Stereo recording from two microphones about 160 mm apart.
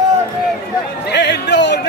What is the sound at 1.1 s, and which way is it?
Speech, 90° left.